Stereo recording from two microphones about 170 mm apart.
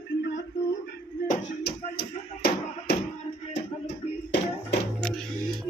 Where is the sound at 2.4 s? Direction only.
80° left.